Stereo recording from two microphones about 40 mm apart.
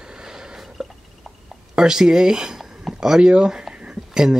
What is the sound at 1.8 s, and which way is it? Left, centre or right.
Speech, centre.